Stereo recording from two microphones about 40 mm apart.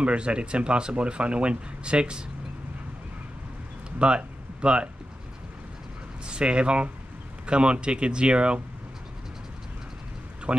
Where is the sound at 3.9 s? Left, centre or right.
Right.